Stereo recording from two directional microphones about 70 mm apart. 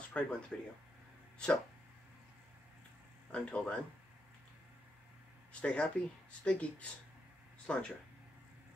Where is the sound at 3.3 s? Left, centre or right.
Centre.